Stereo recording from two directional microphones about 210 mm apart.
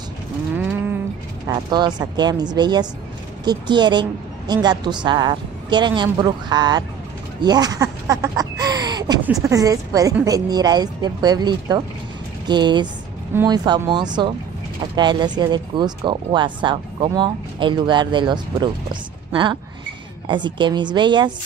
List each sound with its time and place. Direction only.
1.5 s speech: 20° right (ahead or behind)
13.3 s speech: 10° right (ahead or behind)
13.7 s speech: 20° right (ahead or behind)